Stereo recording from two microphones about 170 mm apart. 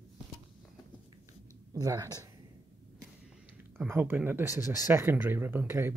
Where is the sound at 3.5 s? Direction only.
10° right (ahead or behind).